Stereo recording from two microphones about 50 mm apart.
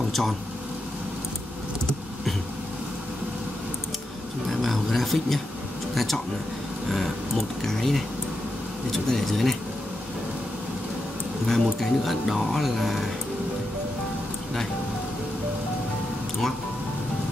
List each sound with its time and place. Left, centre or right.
4.5 s speech: centre
11.4 s speech: centre